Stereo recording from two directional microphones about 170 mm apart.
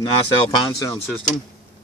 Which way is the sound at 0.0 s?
30° left (ahead or behind).